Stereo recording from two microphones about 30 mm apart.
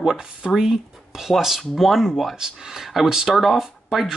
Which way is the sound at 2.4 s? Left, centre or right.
Centre.